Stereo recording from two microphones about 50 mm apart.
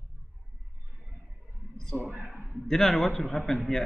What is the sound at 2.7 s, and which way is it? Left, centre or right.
Speech, centre.